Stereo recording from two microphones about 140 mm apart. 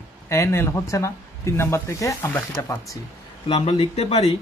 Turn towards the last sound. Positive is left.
turn(degrees=45)  # may be behind; listen again after turning